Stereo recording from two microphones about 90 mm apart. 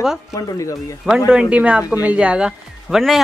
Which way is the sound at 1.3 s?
10° right (ahead or behind).